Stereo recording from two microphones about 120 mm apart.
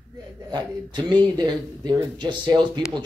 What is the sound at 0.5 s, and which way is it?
Speech, 35° right (ahead or behind).